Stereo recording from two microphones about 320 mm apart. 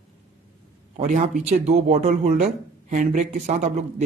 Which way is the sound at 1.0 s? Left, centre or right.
Right.